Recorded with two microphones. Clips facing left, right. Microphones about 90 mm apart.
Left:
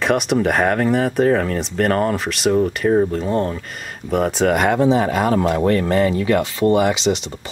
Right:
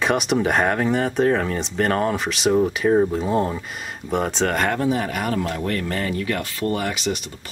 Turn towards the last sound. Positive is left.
turn(degrees=20)  # may be behind; listen again after turning